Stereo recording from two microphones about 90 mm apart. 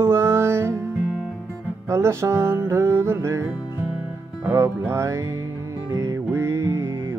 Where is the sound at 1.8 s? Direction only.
30° right (ahead or behind).